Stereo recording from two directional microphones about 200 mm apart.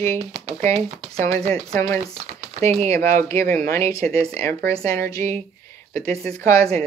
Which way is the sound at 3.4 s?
45° right (ahead or behind).